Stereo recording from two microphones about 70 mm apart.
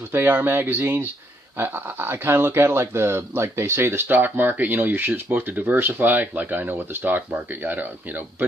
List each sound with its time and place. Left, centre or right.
0.1 s speech: right